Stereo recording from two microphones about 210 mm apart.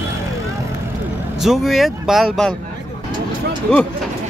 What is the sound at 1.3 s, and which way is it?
Speech, centre (ahead or behind).